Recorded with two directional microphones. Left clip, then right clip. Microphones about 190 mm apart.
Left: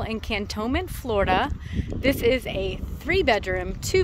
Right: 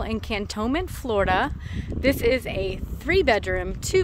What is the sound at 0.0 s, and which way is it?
Speech, 15° right (ahead or behind).